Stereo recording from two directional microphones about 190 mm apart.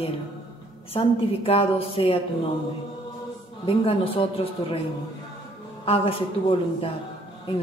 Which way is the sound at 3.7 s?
30° left (ahead or behind).